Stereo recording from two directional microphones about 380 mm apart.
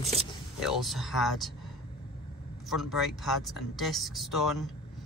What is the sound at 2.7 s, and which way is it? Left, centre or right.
Speech, centre.